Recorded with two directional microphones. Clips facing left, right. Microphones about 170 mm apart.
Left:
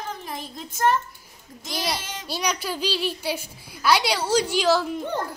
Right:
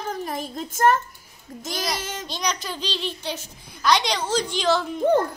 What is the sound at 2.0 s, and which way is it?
Speech, 45° right (ahead or behind).